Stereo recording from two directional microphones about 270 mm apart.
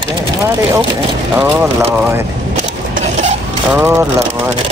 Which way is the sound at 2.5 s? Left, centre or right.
Right.